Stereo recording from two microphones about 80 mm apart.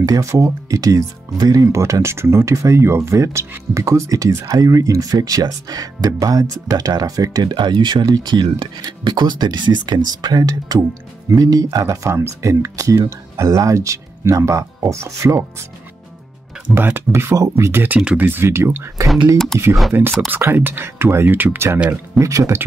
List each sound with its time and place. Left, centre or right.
0.0 s speech: right
7.5 s speech: right
16.7 s speech: right
17.8 s speech: right
19.3 s speech: centre
19.9 s speech: right
21.7 s speech: centre
22.2 s speech: right